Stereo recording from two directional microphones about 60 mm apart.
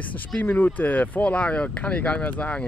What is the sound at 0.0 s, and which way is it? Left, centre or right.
Speech, left.